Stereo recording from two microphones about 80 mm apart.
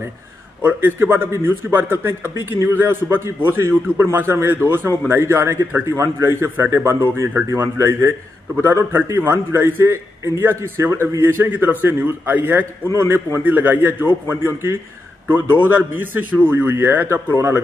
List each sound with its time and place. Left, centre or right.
0.6 s a man's voice: right
15.4 s a man's voice: left
15.7 s a man's voice: right